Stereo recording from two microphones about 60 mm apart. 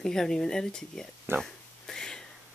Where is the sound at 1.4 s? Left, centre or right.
Centre.